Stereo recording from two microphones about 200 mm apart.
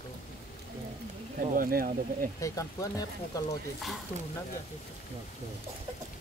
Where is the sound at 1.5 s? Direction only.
45° right (ahead or behind).